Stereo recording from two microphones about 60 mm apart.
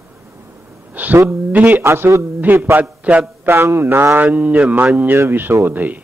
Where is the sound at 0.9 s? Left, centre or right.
Right.